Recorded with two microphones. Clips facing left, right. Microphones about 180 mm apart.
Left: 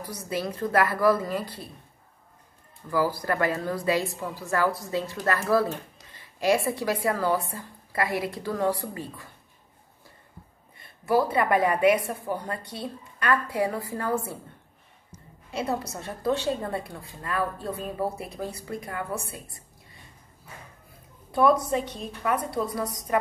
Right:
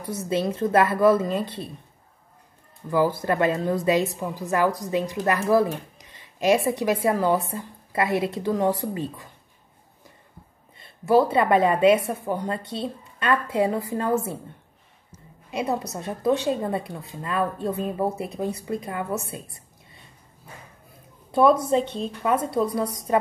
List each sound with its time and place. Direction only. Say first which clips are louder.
0.0 s a woman's voice: right 6 dB; 25° right (ahead or behind)
2.9 s a woman's voice: right 4 dB; 20° right (ahead or behind)
10.8 s a woman's voice: right 5 dB; 25° right (ahead or behind)
15.5 s a woman's voice: right 3 dB; 20° right (ahead or behind)
21.3 s a woman's voice: right 3 dB; 25° right (ahead or behind)